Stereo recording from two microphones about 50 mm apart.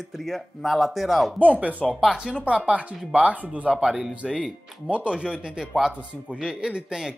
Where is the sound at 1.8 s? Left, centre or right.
Centre.